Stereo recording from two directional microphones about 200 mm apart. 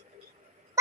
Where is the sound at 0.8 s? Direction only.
15° right (ahead or behind).